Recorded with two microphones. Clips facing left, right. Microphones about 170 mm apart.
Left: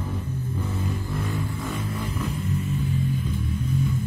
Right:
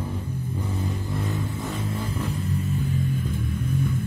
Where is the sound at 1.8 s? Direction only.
30° right (ahead or behind).